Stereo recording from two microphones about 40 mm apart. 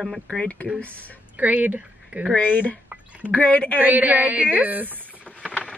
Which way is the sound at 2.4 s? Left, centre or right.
Left.